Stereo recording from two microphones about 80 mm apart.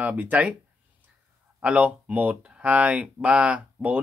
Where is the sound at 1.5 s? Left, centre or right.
Centre.